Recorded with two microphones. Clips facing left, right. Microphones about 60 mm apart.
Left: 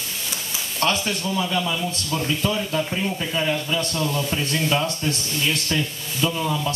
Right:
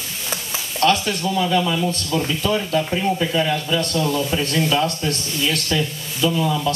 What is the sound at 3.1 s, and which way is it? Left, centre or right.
Speech, right.